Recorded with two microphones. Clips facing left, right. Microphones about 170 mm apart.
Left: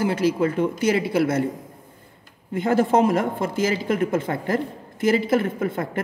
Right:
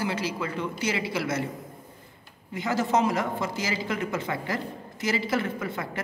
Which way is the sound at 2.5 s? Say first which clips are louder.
Left 6 dB; 55° left (ahead or behind).